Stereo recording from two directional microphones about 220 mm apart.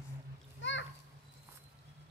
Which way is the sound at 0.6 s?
55° left (ahead or behind).